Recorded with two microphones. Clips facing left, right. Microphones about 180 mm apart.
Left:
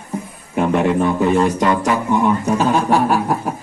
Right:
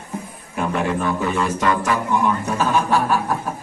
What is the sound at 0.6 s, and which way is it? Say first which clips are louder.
A man's voice: left 6 dB; 25° left (ahead or behind).